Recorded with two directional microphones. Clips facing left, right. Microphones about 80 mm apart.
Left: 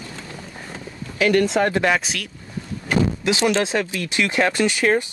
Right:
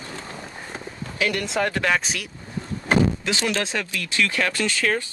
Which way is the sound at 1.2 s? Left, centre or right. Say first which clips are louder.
Left 6 dB; left.